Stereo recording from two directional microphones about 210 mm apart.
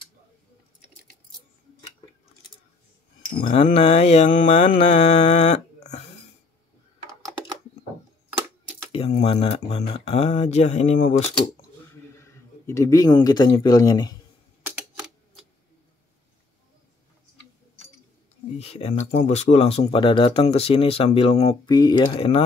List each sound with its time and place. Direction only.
3.5 s mantra: 25° left (ahead or behind)
8.9 s mantra: 30° left (ahead or behind)
11.9 s speech: 15° left (ahead or behind)
18.6 s mantra: 30° left (ahead or behind)
19.9 s speech: 25° left (ahead or behind)